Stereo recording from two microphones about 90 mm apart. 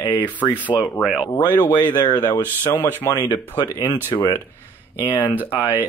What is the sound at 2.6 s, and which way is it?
Speech, 20° left (ahead or behind).